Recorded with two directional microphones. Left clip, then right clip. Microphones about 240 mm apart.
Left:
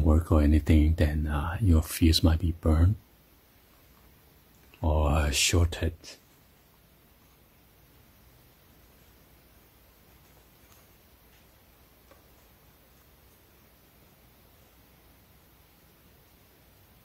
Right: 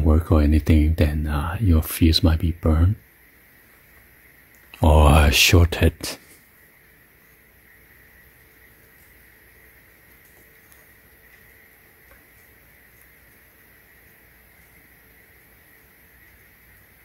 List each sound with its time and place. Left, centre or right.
0.0 s speech: centre
4.6 s speech: right